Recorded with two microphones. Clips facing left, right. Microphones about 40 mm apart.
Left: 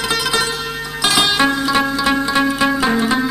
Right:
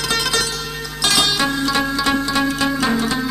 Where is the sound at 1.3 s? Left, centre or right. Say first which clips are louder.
Left 3 dB; left.